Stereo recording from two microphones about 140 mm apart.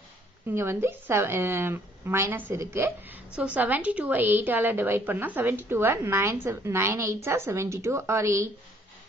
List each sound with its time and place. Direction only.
0.5 s a woman's voice: 15° right (ahead or behind)